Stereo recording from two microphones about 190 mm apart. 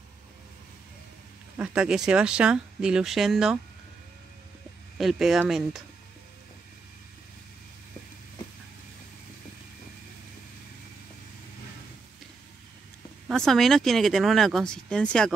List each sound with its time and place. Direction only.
1.6 s speech: 5° right (ahead or behind)
4.9 s speech: centre (ahead or behind)
13.3 s speech: centre (ahead or behind)